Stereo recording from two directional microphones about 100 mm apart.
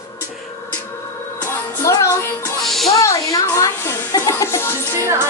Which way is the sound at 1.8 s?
35° left (ahead or behind).